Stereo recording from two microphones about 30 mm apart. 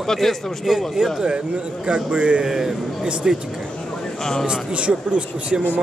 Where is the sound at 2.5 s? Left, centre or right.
Centre.